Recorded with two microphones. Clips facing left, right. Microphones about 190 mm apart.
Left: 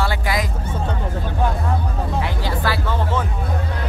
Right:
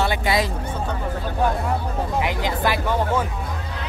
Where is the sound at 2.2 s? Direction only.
15° right (ahead or behind).